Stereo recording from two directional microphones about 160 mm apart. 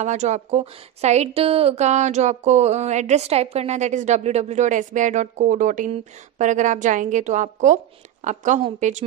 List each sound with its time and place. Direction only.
0.0 s a woman's voice: 45° right (ahead or behind)